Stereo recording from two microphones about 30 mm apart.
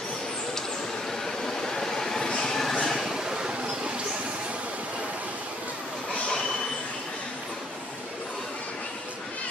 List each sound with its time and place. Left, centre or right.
1.2 s vehicle: centre
2.5 s a sound: centre
3.0 s train: centre